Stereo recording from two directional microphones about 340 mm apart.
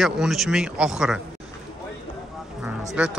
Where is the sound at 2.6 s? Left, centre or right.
Centre.